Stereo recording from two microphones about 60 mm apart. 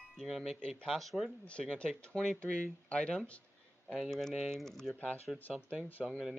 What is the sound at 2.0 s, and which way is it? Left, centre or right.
Speech, centre.